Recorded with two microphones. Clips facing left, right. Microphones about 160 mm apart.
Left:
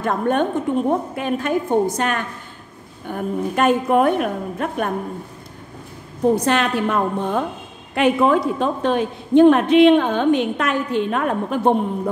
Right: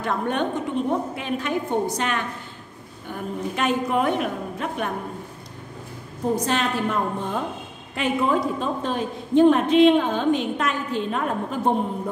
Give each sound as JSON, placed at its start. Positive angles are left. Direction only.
{"t": 0.0, "sound": "a woman's voice", "side_deg": 50}
{"t": 6.3, "sound": "a woman's voice", "side_deg": 65}